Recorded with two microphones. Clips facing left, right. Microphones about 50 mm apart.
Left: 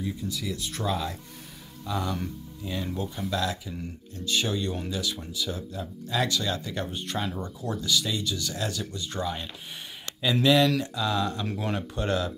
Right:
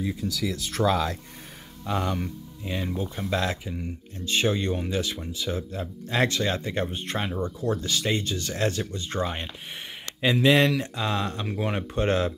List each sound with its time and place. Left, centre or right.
0.0 s speech: right
1.9 s speech: right
2.6 s speech: right
3.3 s speech: right
11.4 s speech: right